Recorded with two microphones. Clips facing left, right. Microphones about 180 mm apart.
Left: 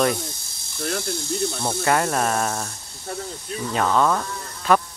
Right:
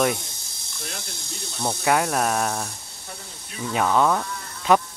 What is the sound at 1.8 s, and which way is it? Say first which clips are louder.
Speech: even; centre (ahead or behind).